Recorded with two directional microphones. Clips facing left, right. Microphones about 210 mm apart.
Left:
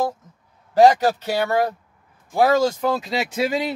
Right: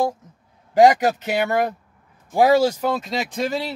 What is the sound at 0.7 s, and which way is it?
Speech, 15° right (ahead or behind).